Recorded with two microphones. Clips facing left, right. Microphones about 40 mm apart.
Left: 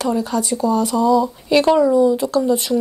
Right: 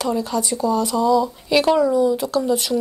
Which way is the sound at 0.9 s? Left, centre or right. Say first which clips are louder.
Left 2 dB; centre.